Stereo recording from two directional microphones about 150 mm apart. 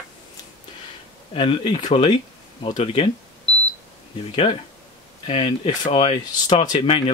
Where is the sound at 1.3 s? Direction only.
35° left (ahead or behind).